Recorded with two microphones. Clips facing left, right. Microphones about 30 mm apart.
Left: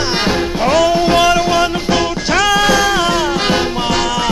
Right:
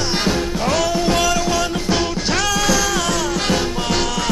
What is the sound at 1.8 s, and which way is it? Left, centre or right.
Music, centre.